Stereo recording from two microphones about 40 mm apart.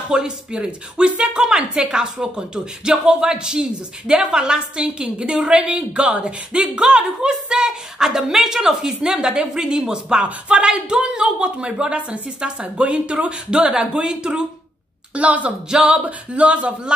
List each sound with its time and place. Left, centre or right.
0.1 s a woman's voice: right
10.2 s a woman's voice: right
15.1 s speech: right
15.7 s speech: right